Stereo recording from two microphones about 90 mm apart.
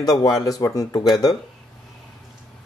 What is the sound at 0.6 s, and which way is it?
Speech, 35° left (ahead or behind).